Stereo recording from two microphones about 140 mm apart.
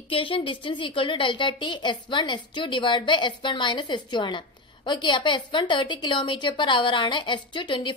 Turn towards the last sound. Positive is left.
turn(degrees=35)  # may be behind; listen again after turning